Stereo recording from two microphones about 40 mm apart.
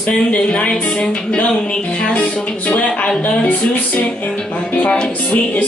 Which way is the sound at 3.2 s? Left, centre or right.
Left.